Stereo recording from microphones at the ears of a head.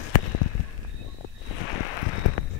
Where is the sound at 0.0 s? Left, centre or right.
Left.